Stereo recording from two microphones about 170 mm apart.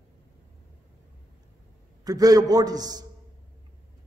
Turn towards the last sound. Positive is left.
turn(degrees=-20)  # may be behind; listen again after turning